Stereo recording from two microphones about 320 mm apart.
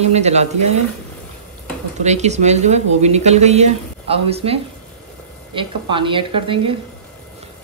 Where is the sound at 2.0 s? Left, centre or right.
Right.